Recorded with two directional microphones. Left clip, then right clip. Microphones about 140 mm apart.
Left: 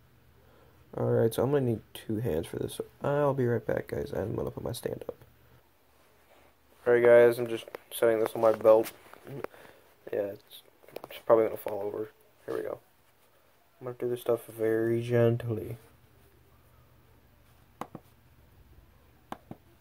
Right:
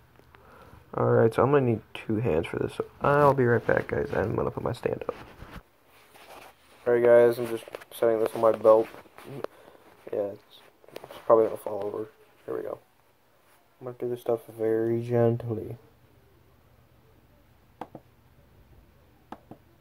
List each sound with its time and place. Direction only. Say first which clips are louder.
0.9 s speech: right 5 dB; 25° left (ahead or behind)
6.8 s speech: right 1 dB; 5° left (ahead or behind)
10.1 s a sound: right 2 dB; centre (ahead or behind)
11.2 s speech: right 3 dB; 15° left (ahead or behind)
13.8 s speech: right 1 dB; 5° left (ahead or behind)